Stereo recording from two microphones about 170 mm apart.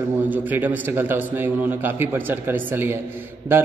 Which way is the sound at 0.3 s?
10° right (ahead or behind).